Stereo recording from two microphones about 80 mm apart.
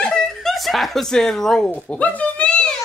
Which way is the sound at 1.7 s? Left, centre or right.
Centre.